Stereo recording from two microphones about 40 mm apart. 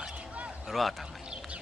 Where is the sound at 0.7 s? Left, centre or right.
Centre.